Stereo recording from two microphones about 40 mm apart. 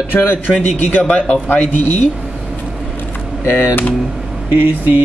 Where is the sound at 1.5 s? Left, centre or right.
Left.